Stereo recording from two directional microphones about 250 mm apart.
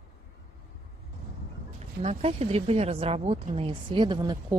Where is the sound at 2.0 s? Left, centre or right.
Right.